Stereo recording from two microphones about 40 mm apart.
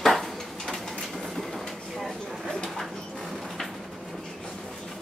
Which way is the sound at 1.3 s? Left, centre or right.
Centre.